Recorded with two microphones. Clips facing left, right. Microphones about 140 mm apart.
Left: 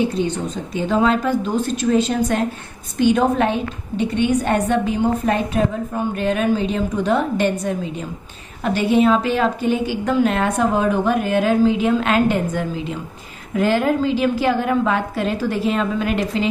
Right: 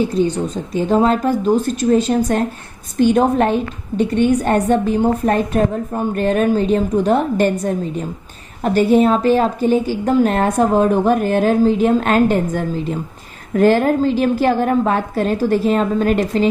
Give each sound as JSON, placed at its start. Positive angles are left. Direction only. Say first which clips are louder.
{"t": 0.7, "sound": "a woman's voice", "louder": "right 3 dB", "side_deg": -40}